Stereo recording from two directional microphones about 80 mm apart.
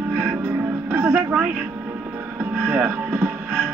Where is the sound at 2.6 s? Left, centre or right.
Right.